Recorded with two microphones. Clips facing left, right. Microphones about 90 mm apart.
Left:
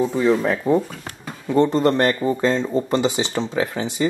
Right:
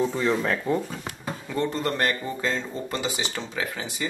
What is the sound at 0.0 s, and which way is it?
Speech, 10° left (ahead or behind).